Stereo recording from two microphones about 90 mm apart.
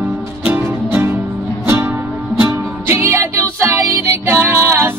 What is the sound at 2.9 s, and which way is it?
Music, 30° right (ahead or behind).